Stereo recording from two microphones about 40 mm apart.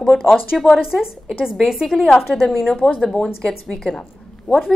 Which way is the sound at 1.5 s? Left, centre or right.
Centre.